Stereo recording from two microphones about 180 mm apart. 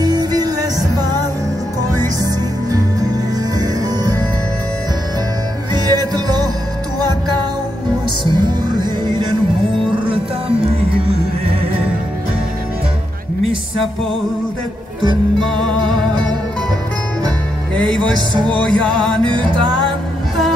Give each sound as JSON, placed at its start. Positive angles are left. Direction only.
{"t": 0.0, "sound": "music", "side_deg": -20}
{"t": 2.2, "sound": "music", "side_deg": -20}
{"t": 5.7, "sound": "music", "side_deg": -25}
{"t": 8.2, "sound": "music", "side_deg": -25}
{"t": 15.7, "sound": "music", "side_deg": -25}
{"t": 18.3, "sound": "music", "side_deg": -25}
{"t": 18.7, "sound": "music", "side_deg": 5}
{"t": 19.2, "sound": "music", "side_deg": -25}